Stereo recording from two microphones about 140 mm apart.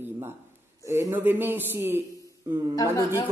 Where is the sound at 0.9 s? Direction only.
20° right (ahead or behind).